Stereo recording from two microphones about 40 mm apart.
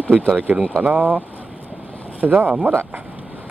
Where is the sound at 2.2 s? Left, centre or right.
Right.